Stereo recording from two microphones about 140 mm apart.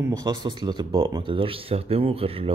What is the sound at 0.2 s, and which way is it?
A man's voice, 35° right (ahead or behind).